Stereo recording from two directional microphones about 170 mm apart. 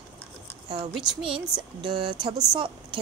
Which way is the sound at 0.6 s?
30° right (ahead or behind).